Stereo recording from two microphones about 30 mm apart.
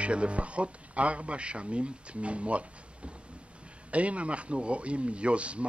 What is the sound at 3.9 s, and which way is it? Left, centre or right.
Speech, right.